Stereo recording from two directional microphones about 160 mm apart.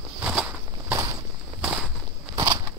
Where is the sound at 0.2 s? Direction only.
5° right (ahead or behind).